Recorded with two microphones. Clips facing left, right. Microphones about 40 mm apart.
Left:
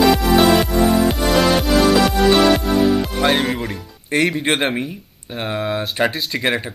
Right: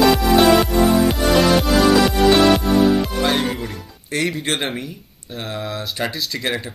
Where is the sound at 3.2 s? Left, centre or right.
Left.